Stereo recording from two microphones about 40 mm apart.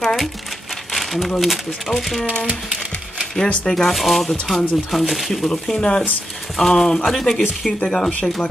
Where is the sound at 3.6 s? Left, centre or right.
Centre.